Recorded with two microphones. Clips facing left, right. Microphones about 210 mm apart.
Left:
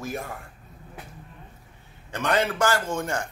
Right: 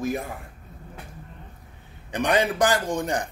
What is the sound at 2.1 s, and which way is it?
Speech, 15° right (ahead or behind).